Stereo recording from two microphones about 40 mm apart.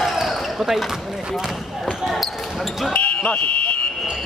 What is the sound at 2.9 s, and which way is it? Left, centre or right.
Fire alarm, left.